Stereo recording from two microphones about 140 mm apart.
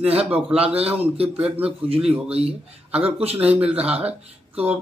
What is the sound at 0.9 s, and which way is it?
Speech, 45° right (ahead or behind).